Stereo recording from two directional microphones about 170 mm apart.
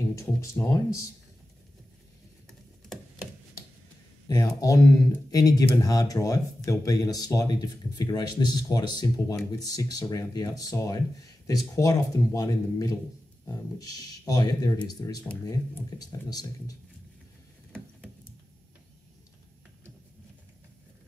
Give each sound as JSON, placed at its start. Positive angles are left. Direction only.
{"t": 0.1, "sound": "speech", "side_deg": 20}
{"t": 4.3, "sound": "speech", "side_deg": 20}